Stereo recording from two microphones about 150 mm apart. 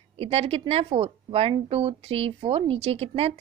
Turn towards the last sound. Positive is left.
turn(degrees=-40)  # may be behind; listen again after turning